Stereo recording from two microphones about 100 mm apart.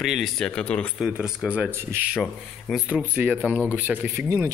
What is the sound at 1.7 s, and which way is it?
Speech, 25° right (ahead or behind).